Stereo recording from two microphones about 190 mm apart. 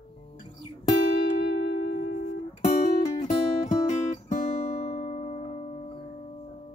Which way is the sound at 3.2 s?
40° left (ahead or behind).